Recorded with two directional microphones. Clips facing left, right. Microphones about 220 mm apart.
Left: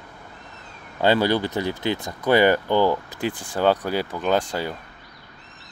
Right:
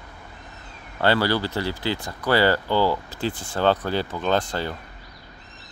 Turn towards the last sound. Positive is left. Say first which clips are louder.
# left 1 dB
turn(degrees=15)  # may be behind; listen again after turning